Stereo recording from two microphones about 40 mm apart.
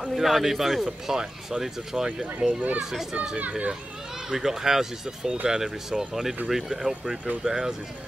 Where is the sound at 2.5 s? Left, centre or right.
Right.